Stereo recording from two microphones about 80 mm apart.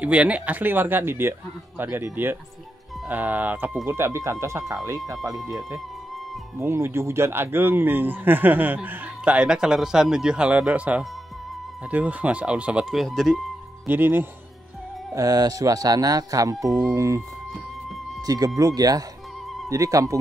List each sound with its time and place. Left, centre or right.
0.0 s speech: centre
3.8 s speech: right
5.3 s speech: centre
6.6 s speech: right
9.3 s speech: centre
12.9 s speech: centre
13.8 s speech: right
15.1 s speech: right
18.2 s speech: right